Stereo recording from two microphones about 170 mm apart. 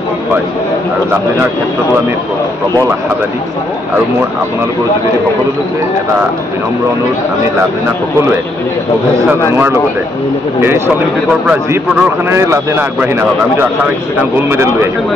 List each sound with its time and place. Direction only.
11.4 s a man's voice: 10° right (ahead or behind)
14.3 s a man's voice: 15° right (ahead or behind)